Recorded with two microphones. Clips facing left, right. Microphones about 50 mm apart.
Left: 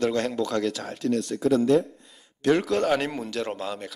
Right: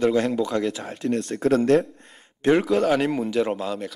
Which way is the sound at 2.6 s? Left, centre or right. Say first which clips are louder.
Right 3 dB; centre.